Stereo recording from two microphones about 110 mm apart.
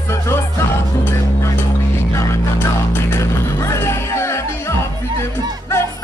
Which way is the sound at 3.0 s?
25° left (ahead or behind).